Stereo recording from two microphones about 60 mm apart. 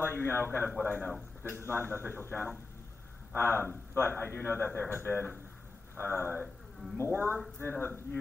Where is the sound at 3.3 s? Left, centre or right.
Left.